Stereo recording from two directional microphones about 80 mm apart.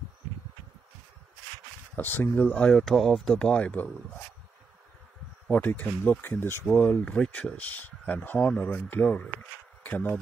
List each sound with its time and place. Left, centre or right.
2.0 s speech: left
2.5 s speech: centre
5.5 s speech: left